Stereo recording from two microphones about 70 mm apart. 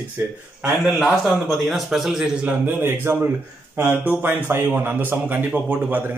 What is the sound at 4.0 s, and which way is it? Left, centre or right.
A man's voice, right.